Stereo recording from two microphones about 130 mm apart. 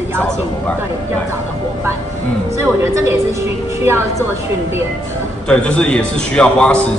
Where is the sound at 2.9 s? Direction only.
20° right (ahead or behind).